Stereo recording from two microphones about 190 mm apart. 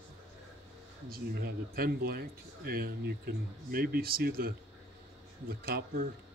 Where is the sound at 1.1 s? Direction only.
55° right (ahead or behind).